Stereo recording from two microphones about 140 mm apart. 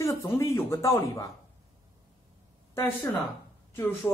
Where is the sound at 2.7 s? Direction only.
15° left (ahead or behind).